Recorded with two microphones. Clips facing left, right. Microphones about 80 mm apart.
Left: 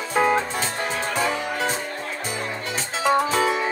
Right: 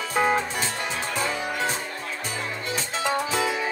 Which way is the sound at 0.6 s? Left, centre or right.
Left.